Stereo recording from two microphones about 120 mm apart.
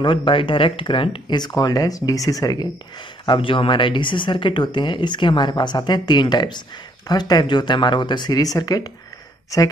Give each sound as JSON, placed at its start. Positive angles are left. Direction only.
{"t": 0.0, "sound": "speech", "side_deg": 45}
{"t": 1.4, "sound": "speech", "side_deg": 30}
{"t": 3.3, "sound": "speech", "side_deg": 45}